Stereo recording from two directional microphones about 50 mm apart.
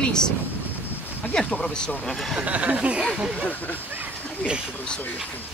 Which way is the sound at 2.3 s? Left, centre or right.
Right.